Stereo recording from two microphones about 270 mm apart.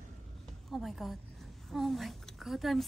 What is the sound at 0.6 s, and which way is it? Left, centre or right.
A woman's voice, centre.